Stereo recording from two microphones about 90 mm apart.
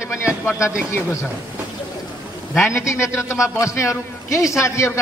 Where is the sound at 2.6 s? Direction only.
30° left (ahead or behind).